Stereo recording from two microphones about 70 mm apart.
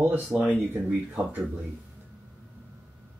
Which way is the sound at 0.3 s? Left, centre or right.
Centre.